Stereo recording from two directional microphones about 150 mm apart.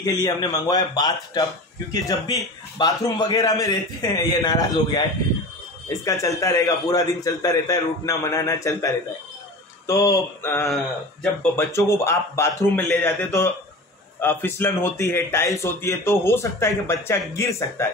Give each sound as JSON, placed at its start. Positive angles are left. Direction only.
{"t": 0.0, "sound": "a man's voice", "side_deg": 25}
{"t": 6.0, "sound": "a man's voice", "side_deg": 20}